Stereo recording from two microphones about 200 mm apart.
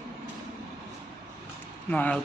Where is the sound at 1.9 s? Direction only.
5° left (ahead or behind).